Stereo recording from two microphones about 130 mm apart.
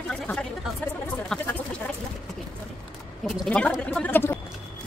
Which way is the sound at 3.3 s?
5° left (ahead or behind).